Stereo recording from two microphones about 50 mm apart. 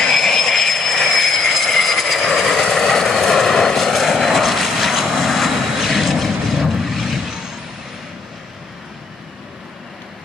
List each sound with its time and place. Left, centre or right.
0.0 s vehicle: centre